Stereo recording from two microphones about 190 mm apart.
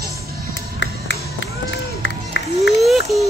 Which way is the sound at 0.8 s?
75° left (ahead or behind).